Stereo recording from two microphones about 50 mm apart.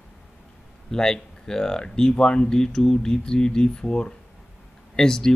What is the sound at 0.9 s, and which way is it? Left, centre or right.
Speech, centre.